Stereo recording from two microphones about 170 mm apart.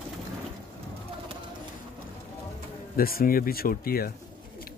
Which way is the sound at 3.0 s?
60° left (ahead or behind).